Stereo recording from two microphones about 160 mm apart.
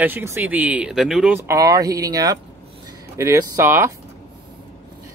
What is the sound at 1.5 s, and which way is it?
Speech, 20° right (ahead or behind).